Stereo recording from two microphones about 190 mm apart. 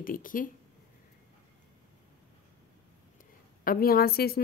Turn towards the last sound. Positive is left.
turn(degrees=55)  # may be behind; listen again after turning